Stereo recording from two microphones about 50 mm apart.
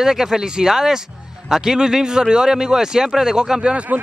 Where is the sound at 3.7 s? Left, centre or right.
Right.